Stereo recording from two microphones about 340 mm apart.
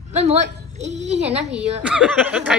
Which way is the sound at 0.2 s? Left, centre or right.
Centre.